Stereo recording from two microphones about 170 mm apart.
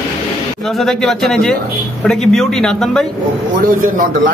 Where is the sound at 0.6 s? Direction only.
5° left (ahead or behind).